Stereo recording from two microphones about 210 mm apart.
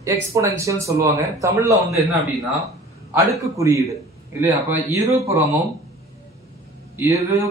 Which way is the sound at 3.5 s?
15° right (ahead or behind).